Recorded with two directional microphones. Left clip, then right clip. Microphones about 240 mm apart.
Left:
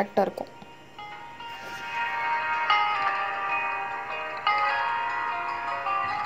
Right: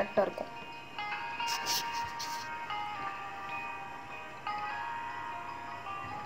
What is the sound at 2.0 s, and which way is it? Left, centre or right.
Music, left.